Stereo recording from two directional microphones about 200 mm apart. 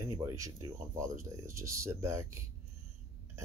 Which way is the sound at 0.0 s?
15° right (ahead or behind).